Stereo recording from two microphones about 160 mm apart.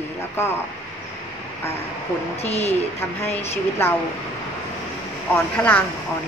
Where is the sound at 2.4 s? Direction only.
40° left (ahead or behind).